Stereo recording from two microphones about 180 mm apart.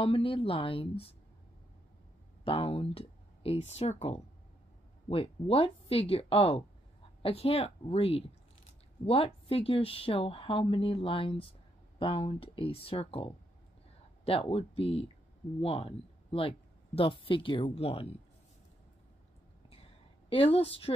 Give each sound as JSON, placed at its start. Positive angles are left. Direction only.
{"t": 0.0, "sound": "speech", "side_deg": 30}
{"t": 2.4, "sound": "speech", "side_deg": 30}
{"t": 20.2, "sound": "speech", "side_deg": 30}